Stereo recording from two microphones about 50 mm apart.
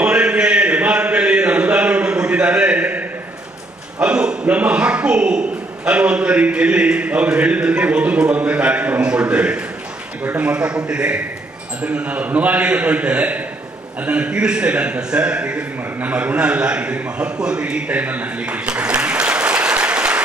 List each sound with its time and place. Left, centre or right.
0.0 s a sound: right
4.0 s a man's voice: centre
11.8 s a man's voice: right
18.4 s applause: right